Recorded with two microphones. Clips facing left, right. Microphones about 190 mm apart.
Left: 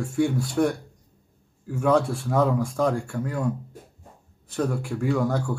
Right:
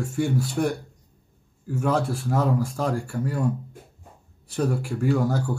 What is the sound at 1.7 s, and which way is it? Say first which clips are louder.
Speech: left 3 dB; 5° right (ahead or behind).